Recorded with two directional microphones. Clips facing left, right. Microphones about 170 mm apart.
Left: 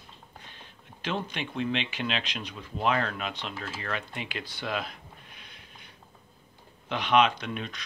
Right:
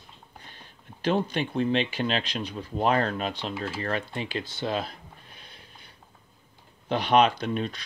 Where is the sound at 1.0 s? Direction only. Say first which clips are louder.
Right 7 dB; 35° right (ahead or behind).